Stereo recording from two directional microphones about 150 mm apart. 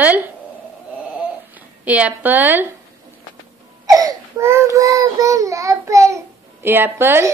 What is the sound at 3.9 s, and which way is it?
Speech, 25° right (ahead or behind).